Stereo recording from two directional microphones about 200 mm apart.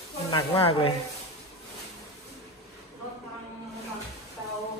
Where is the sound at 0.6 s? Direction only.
25° left (ahead or behind).